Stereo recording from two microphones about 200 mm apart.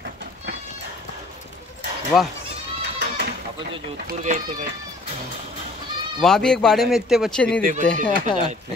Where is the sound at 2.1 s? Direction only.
Centre (ahead or behind).